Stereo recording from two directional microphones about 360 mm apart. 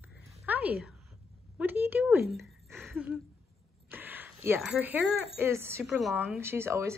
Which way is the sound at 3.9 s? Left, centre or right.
Centre.